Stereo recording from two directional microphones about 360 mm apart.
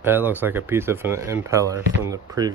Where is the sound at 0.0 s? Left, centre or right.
Centre.